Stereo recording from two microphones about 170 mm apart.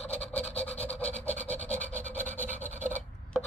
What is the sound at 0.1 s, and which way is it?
Rub, 10° left (ahead or behind).